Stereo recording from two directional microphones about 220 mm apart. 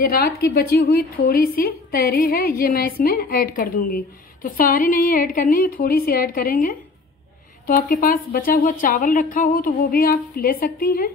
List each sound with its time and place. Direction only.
0.0 s a woman's voice: 45° left (ahead or behind)